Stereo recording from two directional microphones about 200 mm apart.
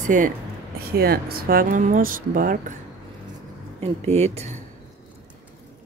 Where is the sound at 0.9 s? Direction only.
50° right (ahead or behind).